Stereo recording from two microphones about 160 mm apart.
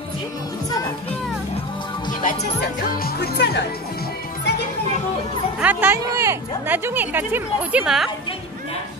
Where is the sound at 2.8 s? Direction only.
70° left (ahead or behind); by 4.1 s 90° left.